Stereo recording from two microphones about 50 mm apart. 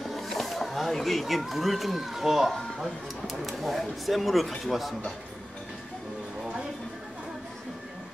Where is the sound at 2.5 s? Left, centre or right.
Centre.